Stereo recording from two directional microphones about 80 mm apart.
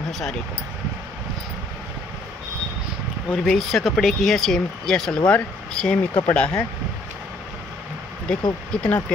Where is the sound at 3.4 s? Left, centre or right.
Centre.